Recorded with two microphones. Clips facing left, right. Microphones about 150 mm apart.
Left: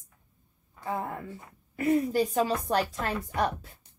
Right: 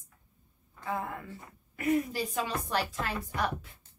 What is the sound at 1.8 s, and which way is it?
Speech, 30° left (ahead or behind).